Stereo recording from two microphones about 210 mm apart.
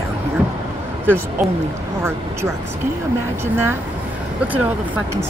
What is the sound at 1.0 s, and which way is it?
Speech, 10° right (ahead or behind).